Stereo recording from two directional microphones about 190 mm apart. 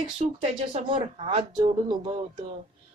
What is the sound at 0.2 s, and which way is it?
Speech, 40° right (ahead or behind).